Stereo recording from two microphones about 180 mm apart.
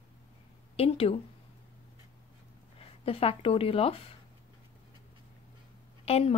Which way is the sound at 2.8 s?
30° left (ahead or behind).